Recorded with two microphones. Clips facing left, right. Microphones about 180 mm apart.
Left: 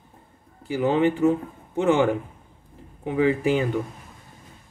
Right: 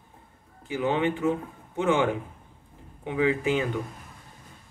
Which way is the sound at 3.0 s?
40° left (ahead or behind).